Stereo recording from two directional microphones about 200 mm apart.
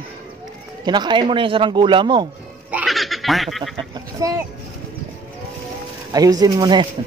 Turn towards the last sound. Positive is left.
turn(degrees=-20)  # may be behind; listen again after turning